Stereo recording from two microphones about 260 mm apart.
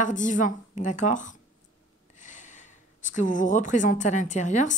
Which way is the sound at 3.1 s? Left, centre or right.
Left.